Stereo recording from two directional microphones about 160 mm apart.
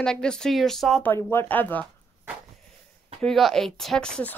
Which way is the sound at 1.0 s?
15° left (ahead or behind).